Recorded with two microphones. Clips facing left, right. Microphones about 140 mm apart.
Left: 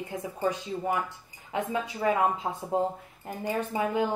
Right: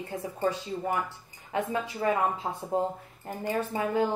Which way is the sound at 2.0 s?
20° left (ahead or behind).